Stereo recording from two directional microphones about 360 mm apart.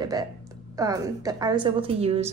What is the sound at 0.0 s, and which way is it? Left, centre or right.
A woman's voice, centre.